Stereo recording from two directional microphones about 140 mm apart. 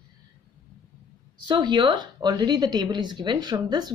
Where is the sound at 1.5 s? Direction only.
35° right (ahead or behind).